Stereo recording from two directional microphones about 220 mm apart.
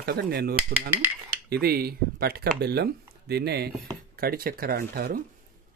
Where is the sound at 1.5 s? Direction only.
45° right (ahead or behind).